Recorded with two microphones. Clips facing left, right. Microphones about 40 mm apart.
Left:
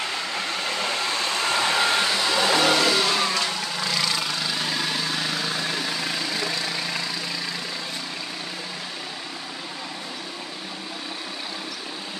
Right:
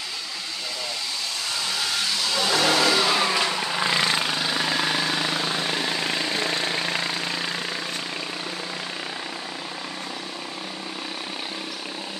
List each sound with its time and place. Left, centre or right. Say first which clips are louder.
0.7 s vehicle: left 5 dB; left; by 2.6 s centre
2.6 s vehicle: even; centre; by 7.5 s right